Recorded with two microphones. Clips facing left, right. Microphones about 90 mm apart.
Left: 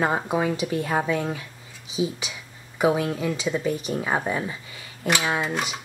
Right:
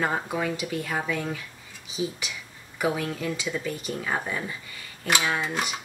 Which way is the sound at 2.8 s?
20° left (ahead or behind).